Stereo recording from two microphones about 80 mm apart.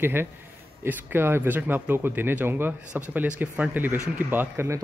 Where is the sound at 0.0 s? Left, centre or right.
Right.